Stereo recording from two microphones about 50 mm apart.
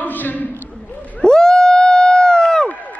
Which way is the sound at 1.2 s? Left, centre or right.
Centre.